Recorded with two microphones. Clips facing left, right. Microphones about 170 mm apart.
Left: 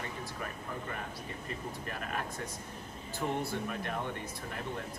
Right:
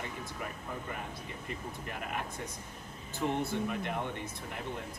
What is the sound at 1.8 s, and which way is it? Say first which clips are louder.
Speech: even; 20° right (ahead or behind).